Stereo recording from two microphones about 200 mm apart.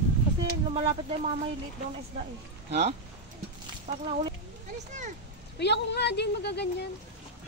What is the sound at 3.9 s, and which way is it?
Speech, 30° right (ahead or behind).